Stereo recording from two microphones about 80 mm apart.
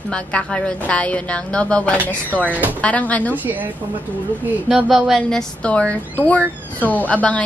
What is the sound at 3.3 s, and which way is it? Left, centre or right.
Speech, right.